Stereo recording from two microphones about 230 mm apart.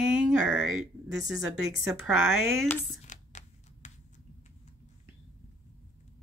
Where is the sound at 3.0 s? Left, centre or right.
Left.